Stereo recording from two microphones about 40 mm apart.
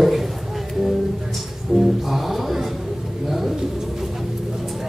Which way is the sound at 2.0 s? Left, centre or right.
Centre.